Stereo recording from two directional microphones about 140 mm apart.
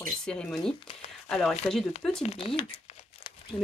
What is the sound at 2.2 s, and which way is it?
Speech, 45° left (ahead or behind).